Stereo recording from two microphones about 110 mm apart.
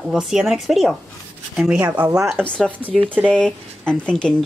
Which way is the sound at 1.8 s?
15° right (ahead or behind).